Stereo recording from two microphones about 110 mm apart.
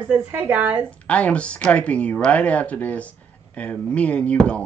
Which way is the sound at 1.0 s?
10° left (ahead or behind).